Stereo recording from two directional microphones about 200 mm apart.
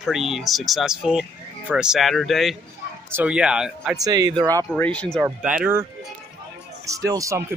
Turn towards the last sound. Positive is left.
turn(degrees=-15)  # may be behind; listen again after turning